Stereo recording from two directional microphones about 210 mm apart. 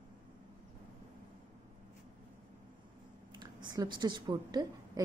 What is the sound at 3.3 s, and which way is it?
A woman's voice, 20° right (ahead or behind).